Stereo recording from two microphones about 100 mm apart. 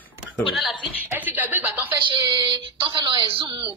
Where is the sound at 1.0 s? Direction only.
20° right (ahead or behind).